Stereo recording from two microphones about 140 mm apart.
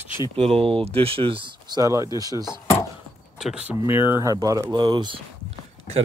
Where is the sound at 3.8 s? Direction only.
15° right (ahead or behind); by 5.2 s 35° right (ahead or behind).